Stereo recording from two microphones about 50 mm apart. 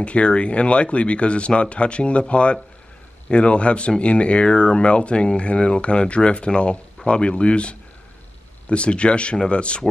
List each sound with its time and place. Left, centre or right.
0.0 s speech: left